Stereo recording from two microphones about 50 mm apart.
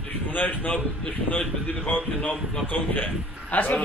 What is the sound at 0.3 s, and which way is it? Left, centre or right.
Speech, left.